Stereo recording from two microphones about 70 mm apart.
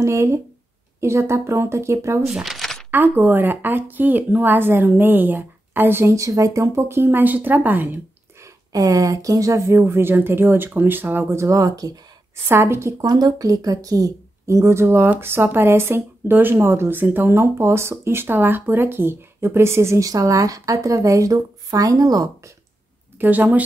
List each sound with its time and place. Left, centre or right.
0.0 s speech: right
2.4 s a sound: centre
2.9 s speech: right
6.1 s speech: right
8.7 s speech: right
9.8 s speech: right
12.4 s speech: right
13.0 s a woman's voice: right
23.1 s speech: right